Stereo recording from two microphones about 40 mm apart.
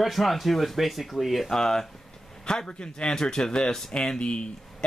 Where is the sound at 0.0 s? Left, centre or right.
Centre.